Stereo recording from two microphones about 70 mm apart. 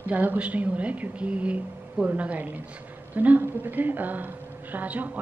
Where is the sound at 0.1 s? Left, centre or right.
Right.